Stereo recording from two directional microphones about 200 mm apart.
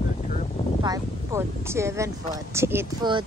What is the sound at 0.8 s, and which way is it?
A woman's voice, 15° right (ahead or behind).